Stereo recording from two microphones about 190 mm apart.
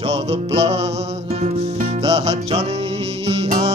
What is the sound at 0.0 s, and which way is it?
Music, 30° right (ahead or behind).